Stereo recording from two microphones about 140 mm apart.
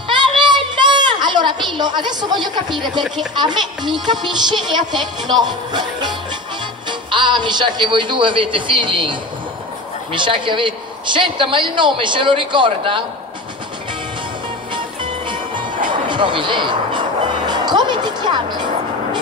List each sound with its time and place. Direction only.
0.1 s a sound: 35° right (ahead or behind)
3.3 s speech: 35° right (ahead or behind)
14.7 s music: 35° right (ahead or behind)